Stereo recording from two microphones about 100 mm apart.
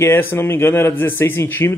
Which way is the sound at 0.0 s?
20° left (ahead or behind).